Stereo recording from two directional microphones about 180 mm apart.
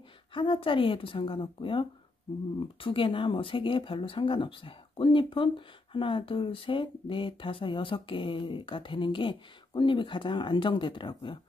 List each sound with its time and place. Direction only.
0.3 s speech: 30° left (ahead or behind)